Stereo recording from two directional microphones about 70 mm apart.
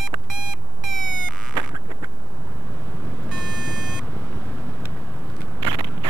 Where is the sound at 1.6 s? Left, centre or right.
Right.